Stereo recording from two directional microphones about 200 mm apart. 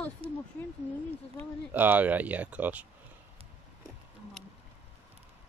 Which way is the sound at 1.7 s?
10° right (ahead or behind).